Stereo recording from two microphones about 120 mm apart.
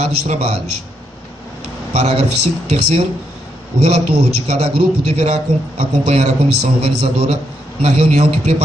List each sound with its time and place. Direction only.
0.0 s a man's voice: 60° right (ahead or behind)
2.0 s a man's voice: 60° right (ahead or behind)